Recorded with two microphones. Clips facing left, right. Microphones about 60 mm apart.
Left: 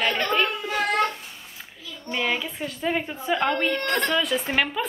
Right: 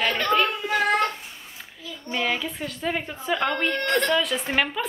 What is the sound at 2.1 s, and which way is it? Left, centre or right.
A woman's voice, centre.